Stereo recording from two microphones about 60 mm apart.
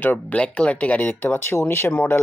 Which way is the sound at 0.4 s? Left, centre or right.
Centre.